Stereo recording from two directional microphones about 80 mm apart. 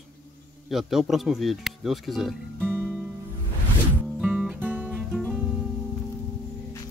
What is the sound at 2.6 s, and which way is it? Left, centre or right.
Music, right.